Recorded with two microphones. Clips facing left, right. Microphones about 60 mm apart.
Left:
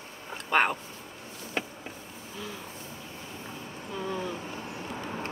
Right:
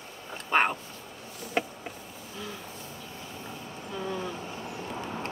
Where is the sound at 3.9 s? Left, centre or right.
Centre.